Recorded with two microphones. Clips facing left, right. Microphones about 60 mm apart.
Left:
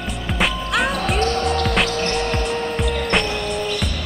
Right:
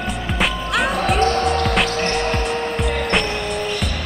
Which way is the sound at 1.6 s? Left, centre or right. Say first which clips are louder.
Right 1 dB; centre.